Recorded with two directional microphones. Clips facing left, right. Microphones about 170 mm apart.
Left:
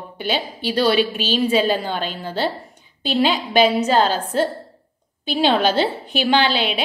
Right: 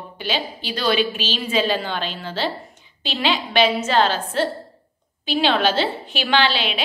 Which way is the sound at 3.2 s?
40° left (ahead or behind).